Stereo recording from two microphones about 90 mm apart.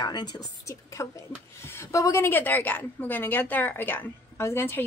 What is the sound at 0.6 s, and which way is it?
A woman's voice, 35° left (ahead or behind).